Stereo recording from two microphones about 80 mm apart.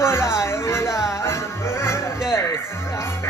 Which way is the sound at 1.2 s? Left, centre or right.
Left.